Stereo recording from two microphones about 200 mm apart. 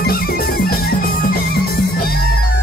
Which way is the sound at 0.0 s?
50° left (ahead or behind).